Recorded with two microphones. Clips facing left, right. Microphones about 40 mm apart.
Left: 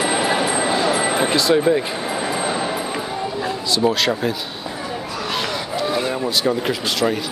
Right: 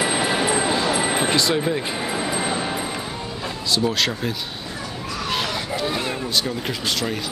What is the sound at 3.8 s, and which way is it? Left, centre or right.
Speech, left.